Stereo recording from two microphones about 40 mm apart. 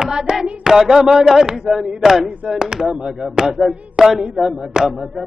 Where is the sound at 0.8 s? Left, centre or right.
Centre.